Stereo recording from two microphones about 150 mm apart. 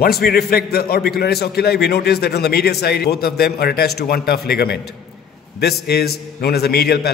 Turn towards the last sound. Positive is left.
turn(degrees=90)